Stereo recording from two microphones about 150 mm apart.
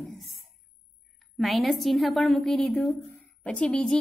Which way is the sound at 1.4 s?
Centre (ahead or behind).